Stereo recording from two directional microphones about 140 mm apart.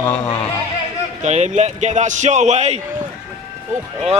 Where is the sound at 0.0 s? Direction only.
15° left (ahead or behind).